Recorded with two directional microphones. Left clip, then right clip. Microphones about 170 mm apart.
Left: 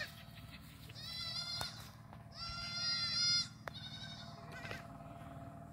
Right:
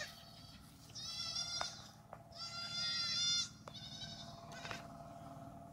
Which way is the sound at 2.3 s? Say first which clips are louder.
Left 1 dB; 15° right (ahead or behind).